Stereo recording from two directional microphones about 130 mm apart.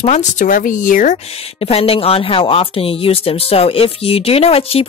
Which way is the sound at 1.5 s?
50° left (ahead or behind).